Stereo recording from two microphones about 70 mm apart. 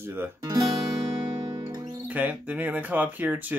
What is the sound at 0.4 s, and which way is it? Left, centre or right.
Speech, right.